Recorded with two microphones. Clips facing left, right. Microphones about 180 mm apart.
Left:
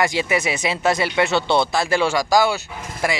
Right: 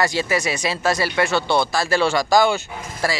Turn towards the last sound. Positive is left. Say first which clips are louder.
# left 1 dB
turn(degrees=15)  # may be behind; listen again after turning